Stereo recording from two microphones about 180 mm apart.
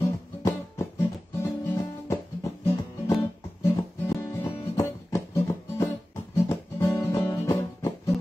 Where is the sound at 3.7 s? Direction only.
15° left (ahead or behind).